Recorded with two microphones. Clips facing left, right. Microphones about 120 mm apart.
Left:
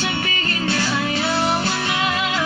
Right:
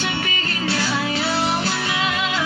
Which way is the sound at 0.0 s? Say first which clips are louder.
Left 1 dB; 5° right (ahead or behind).